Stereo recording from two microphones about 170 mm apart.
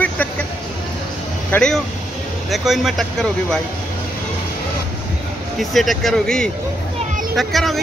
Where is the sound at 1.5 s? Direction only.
5° left (ahead or behind).